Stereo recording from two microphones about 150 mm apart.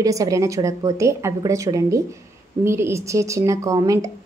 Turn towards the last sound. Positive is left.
turn(degrees=-20)  # may be behind; listen again after turning